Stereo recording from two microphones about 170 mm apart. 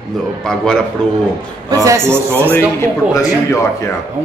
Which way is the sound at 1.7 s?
15° right (ahead or behind).